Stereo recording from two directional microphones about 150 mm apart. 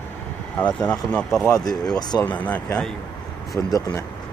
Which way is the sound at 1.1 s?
5° left (ahead or behind).